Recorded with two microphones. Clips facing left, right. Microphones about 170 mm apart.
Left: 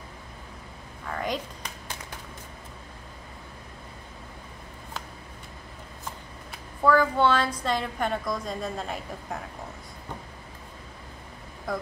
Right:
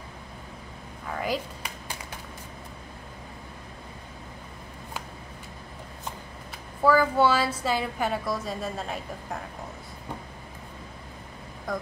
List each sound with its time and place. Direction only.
1.0 s a sound: 5° right (ahead or behind)
6.5 s a woman's voice: 5° right (ahead or behind)
11.7 s a woman's voice: centre (ahead or behind)